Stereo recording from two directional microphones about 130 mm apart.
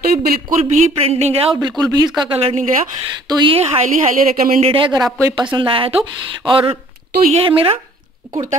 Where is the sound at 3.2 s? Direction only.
35° right (ahead or behind).